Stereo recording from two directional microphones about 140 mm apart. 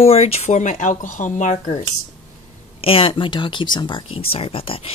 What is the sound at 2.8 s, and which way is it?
Speech, 40° left (ahead or behind).